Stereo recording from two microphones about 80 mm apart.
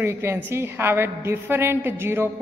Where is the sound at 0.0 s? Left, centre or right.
Right.